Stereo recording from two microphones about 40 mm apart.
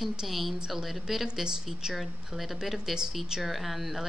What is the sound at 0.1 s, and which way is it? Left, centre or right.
A woman's voice, centre.